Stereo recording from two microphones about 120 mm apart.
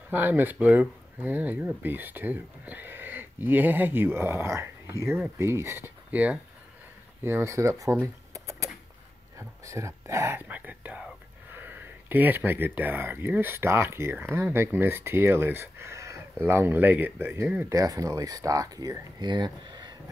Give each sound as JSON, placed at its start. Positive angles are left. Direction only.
{"t": 0.1, "sound": "speech", "side_deg": -15}
{"t": 7.2, "sound": "speech", "side_deg": -20}
{"t": 17.7, "sound": "speech", "side_deg": -30}